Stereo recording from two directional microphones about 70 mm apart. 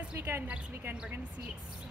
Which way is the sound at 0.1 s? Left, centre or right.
Right.